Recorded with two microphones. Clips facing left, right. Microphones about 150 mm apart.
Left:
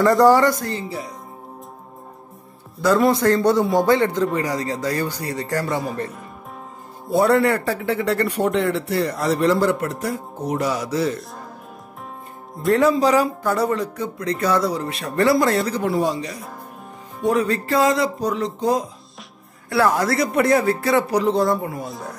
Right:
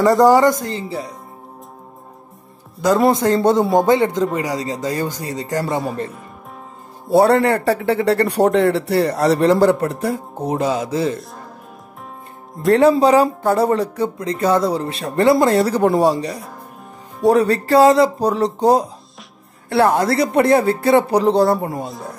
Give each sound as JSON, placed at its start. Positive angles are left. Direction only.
{"t": 0.3, "sound": "speech", "side_deg": -15}
{"t": 3.1, "sound": "speech", "side_deg": -20}
{"t": 7.2, "sound": "speech", "side_deg": -30}
{"t": 12.7, "sound": "speech", "side_deg": -30}
{"t": 19.7, "sound": "speech", "side_deg": -25}
{"t": 21.8, "sound": "speech", "side_deg": 0}